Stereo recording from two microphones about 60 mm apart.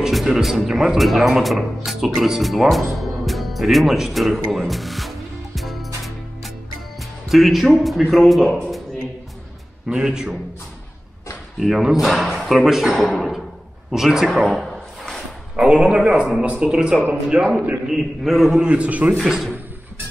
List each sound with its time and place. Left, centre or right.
0.0 s speech: centre
7.0 s speech: centre
9.8 s a man's voice: centre
11.6 s speech: centre
13.9 s a sound: centre
15.5 s a man's voice: centre
18.6 s a man's voice: right
19.1 s a man's voice: centre